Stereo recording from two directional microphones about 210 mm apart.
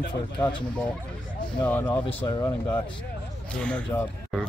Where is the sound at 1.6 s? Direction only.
10° left (ahead or behind).